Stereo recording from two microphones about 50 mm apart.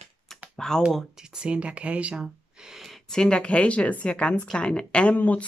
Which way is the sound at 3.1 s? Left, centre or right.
Centre.